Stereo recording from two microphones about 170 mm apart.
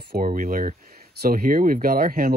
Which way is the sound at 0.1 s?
60° right (ahead or behind).